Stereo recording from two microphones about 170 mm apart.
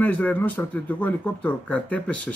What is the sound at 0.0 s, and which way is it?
Speech, 10° left (ahead or behind).